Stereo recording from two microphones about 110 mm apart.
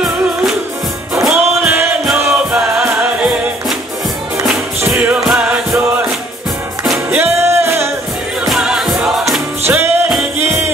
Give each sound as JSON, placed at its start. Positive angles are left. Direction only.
{"t": 1.1, "sound": "music", "side_deg": 0}
{"t": 1.6, "sound": "music", "side_deg": -20}
{"t": 4.9, "sound": "music", "side_deg": -10}
{"t": 7.1, "sound": "music", "side_deg": -20}
{"t": 8.5, "sound": "music", "side_deg": -5}
{"t": 9.7, "sound": "music", "side_deg": -20}